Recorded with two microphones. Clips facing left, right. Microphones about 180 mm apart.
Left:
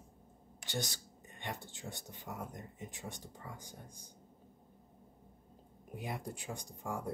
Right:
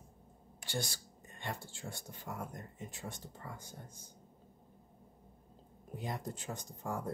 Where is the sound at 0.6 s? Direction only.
20° left (ahead or behind).